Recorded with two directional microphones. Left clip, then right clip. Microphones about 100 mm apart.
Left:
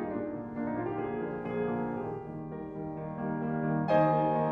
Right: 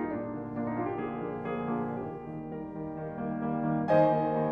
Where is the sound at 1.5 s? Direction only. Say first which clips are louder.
Left 1 dB; 10° right (ahead or behind).